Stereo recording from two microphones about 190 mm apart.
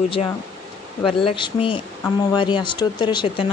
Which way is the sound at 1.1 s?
25° left (ahead or behind).